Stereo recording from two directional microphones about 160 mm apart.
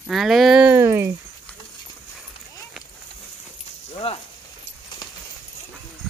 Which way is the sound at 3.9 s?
40° left (ahead or behind).